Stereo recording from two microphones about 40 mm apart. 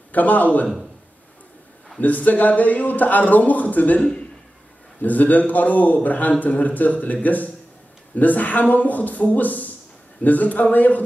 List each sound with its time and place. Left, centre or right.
0.1 s a man's voice: left
2.0 s a man's voice: left
5.0 s a man's voice: left